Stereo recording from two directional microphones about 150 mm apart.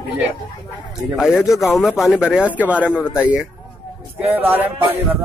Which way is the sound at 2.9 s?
15° left (ahead or behind).